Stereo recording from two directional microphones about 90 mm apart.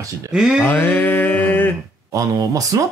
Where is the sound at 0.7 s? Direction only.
20° left (ahead or behind).